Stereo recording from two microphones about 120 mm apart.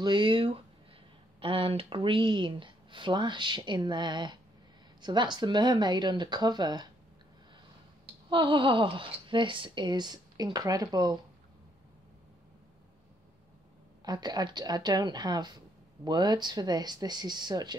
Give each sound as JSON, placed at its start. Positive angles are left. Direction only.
{"t": 0.0, "sound": "speech", "side_deg": -40}
{"t": 8.3, "sound": "speech", "side_deg": -40}
{"t": 14.0, "sound": "speech", "side_deg": -35}